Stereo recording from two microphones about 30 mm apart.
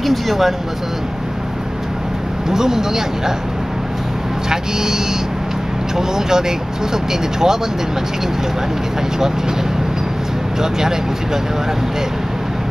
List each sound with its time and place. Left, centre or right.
0.0 s speech: centre
2.5 s speech: centre
4.5 s speech: centre
10.6 s speech: centre